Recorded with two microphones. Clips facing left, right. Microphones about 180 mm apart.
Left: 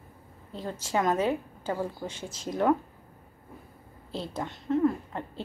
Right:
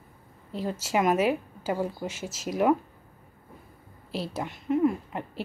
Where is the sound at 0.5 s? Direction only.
10° right (ahead or behind).